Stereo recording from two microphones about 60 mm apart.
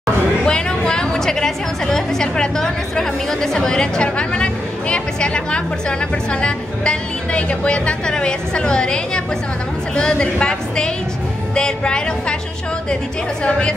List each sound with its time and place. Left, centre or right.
0.5 s a woman's voice: centre
13.4 s speech: centre